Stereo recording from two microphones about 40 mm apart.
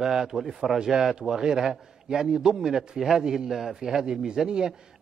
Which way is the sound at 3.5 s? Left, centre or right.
Centre.